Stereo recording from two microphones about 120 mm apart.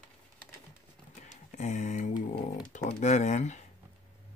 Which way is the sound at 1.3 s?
80° left.